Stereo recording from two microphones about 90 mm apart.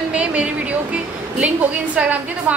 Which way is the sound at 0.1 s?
15° right (ahead or behind).